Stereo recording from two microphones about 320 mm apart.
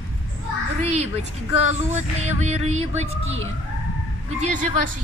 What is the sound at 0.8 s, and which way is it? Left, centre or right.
Speech, right.